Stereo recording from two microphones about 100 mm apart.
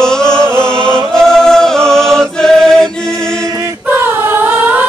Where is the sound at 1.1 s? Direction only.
5° left (ahead or behind).